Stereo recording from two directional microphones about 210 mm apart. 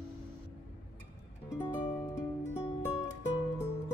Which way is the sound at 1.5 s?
10° left (ahead or behind).